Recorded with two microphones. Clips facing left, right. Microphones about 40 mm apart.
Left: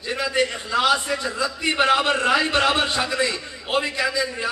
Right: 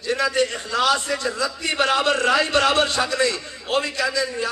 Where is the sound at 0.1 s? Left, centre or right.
Left.